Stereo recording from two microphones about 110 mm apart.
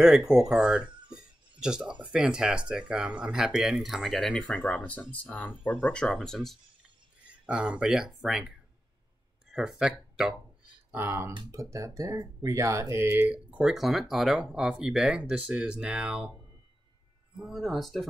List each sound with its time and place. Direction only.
0.0 s speech: 5° right (ahead or behind)
1.1 s a sound: 10° right (ahead or behind)
2.0 s speech: 10° right (ahead or behind)
7.4 s speech: 10° right (ahead or behind)
10.9 s speech: 20° right (ahead or behind)
17.4 s speech: centre (ahead or behind)